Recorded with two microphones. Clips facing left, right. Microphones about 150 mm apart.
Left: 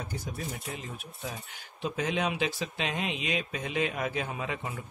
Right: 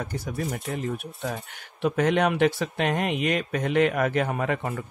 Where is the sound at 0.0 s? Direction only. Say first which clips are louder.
Right 7 dB; 65° right (ahead or behind).